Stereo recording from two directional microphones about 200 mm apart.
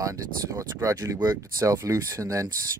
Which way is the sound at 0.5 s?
15° right (ahead or behind).